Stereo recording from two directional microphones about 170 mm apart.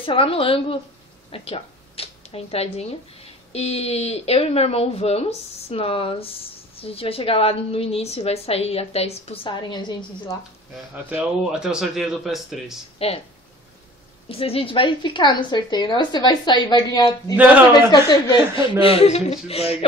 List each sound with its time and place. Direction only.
0.0 s speech: 30° left (ahead or behind)
11.1 s speech: 5° right (ahead or behind)
13.0 s speech: 35° left (ahead or behind)
14.3 s a woman's voice: 35° left (ahead or behind)